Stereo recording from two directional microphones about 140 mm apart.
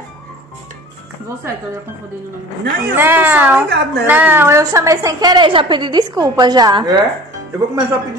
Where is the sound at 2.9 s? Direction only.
15° right (ahead or behind).